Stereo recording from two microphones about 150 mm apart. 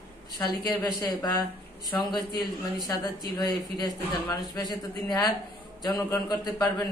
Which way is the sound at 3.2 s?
25° left (ahead or behind).